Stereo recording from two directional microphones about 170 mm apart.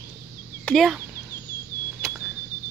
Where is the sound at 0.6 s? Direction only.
Centre (ahead or behind).